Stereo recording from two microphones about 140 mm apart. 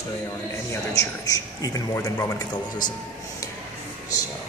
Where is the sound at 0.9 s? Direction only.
25° left (ahead or behind).